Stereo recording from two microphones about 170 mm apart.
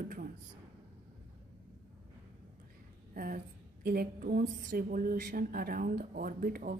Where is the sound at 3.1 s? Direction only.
55° right (ahead or behind).